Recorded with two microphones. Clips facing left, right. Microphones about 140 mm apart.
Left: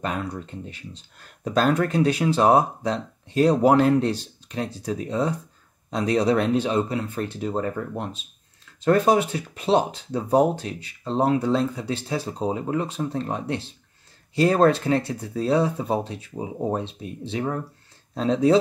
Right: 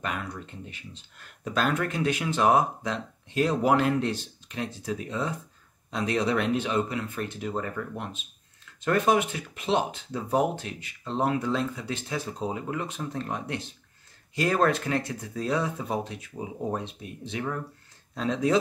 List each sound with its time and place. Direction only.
0.0 s speech: 35° left (ahead or behind)